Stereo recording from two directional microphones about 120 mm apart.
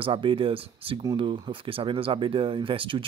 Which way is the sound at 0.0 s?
45° right (ahead or behind).